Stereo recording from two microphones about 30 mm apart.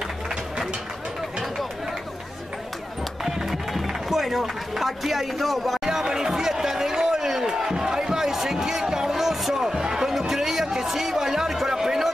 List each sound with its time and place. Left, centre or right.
3.8 s speech: centre
5.9 s a sound: right
9.7 s chatter: centre